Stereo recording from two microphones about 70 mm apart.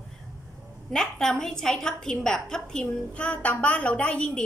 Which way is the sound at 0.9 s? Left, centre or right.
Centre.